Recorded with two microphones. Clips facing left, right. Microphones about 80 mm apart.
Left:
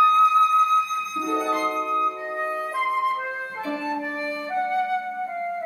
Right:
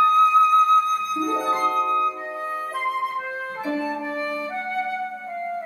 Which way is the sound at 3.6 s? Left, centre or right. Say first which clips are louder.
Right 2 dB; centre.